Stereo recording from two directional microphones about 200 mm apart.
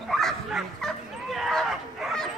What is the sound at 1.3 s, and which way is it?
Bow-wow, centre (ahead or behind).